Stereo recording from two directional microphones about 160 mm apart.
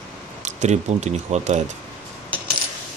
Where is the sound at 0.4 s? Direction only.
45° right (ahead or behind).